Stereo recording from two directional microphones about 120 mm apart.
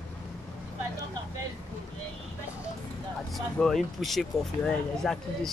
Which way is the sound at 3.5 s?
5° left (ahead or behind).